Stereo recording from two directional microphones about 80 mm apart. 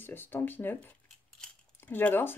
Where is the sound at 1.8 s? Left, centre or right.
Left.